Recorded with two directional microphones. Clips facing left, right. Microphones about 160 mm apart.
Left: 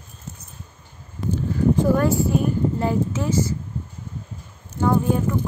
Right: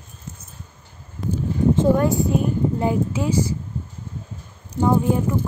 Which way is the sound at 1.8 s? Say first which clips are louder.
Right 2 dB; 20° right (ahead or behind).